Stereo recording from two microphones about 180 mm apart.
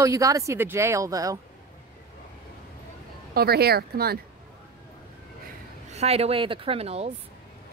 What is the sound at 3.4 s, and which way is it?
Speech, 60° right (ahead or behind).